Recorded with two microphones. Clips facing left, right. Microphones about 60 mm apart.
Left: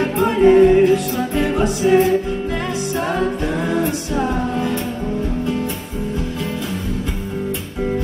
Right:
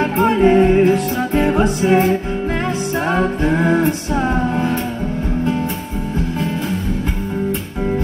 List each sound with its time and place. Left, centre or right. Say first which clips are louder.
0.0 s music: even; right